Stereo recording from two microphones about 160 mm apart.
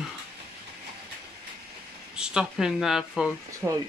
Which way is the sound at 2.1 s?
5° right (ahead or behind).